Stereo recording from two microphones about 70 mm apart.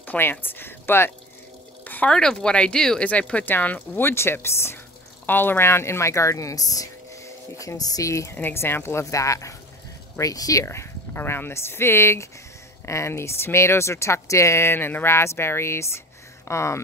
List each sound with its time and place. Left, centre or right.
0.0 s speech: left
2.0 s speech: centre; by 8.4 s left
8.4 s speech: left
9.1 s speech: left
10.6 s speech: left